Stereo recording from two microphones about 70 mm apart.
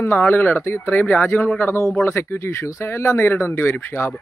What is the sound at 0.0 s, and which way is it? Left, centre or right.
Speech, left.